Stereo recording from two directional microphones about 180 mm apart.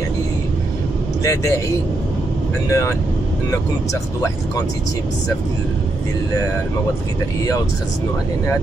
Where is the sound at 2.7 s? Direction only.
15° left (ahead or behind).